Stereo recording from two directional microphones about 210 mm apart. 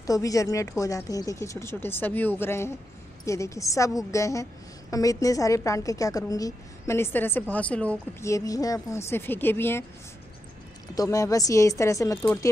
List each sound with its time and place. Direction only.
0.0 s speech: 15° left (ahead or behind)
11.0 s speech: 15° left (ahead or behind)